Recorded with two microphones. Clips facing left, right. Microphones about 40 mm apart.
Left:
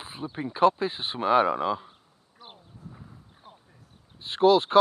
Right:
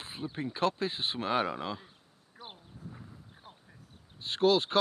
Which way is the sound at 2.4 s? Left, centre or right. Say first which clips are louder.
Left 1 dB; centre.